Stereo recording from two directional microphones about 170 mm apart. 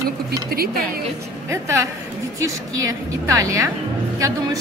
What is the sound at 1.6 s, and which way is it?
A woman's voice, 15° right (ahead or behind).